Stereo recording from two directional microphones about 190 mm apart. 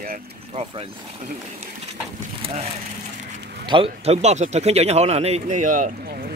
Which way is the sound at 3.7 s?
30° right (ahead or behind).